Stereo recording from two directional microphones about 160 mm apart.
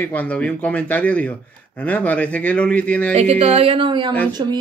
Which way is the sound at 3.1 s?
40° right (ahead or behind).